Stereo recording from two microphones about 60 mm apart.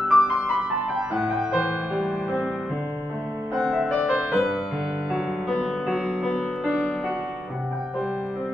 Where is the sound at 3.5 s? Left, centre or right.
Centre.